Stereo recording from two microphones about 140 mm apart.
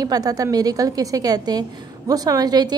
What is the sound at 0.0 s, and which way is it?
A woman's voice, 25° right (ahead or behind).